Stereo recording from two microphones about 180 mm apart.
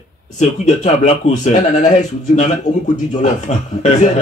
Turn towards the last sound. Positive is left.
turn(degrees=40)  # may be behind; listen again after turning